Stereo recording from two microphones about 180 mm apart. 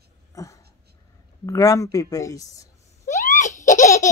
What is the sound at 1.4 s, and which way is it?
Speech, 20° left (ahead or behind).